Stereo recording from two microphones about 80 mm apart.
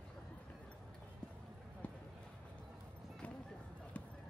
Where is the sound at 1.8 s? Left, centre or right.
Centre.